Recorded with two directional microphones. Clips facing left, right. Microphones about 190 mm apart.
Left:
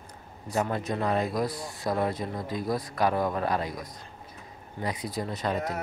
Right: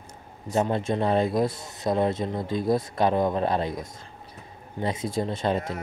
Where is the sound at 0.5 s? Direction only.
25° right (ahead or behind).